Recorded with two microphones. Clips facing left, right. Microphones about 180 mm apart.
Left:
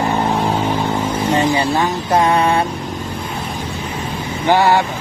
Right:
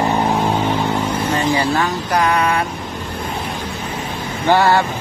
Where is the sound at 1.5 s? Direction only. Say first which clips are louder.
Left 1 dB; 25° left (ahead or behind).